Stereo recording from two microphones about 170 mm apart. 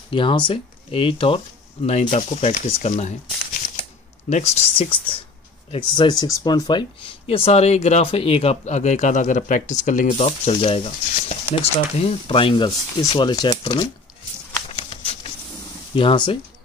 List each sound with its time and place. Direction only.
0.1 s speech: 30° left (ahead or behind)
4.3 s speech: 40° left (ahead or behind); by 13.8 s 25° left (ahead or behind)
15.9 s speech: 30° left (ahead or behind)